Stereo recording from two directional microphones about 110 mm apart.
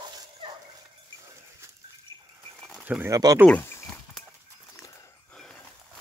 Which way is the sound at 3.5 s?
15° left (ahead or behind).